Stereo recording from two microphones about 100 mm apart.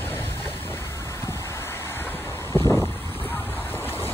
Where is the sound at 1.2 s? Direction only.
25° left (ahead or behind).